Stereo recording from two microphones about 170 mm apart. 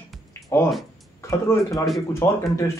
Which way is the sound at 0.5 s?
15° left (ahead or behind).